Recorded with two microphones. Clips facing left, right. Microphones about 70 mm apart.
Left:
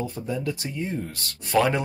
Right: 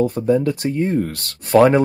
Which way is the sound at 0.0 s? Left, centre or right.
Right.